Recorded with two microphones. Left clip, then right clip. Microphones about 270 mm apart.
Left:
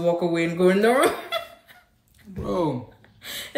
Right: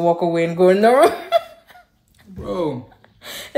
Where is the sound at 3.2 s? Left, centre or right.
Right.